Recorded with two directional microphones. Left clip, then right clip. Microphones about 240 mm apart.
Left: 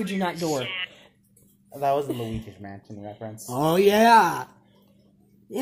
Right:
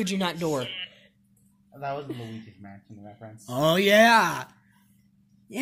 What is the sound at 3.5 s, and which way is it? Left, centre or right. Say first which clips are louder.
Speech: left 1 dB; right.